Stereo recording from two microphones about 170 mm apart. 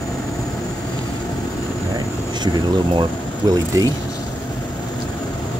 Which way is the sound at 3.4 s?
20° right (ahead or behind).